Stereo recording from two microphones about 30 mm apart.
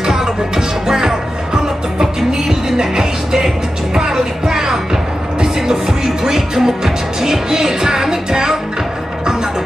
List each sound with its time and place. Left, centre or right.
0.0 s music: centre